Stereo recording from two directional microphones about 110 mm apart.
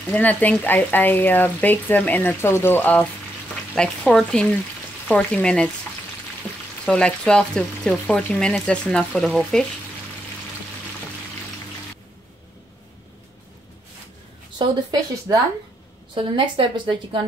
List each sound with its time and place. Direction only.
0.1 s speech: 15° left (ahead or behind)
6.5 s frying: 10° left (ahead or behind)
6.9 s speech: 10° left (ahead or behind)
14.6 s speech: 40° right (ahead or behind)
16.2 s a woman's voice: 50° right (ahead or behind)